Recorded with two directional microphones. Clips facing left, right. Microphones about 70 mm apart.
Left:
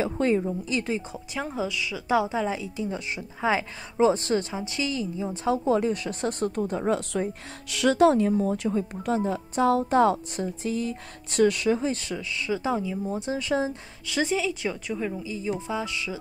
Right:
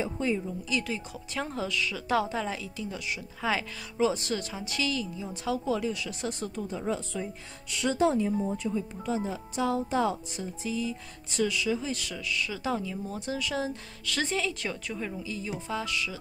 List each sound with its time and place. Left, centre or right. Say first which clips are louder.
0.0 s speech: left 6 dB; left
0.7 s a woman's voice: left 4 dB; left
1.3 s a woman's voice: left 2 dB; centre; by 8.7 s left
8.7 s speech: left 5 dB; left
11.8 s a woman's voice: left 6 dB; left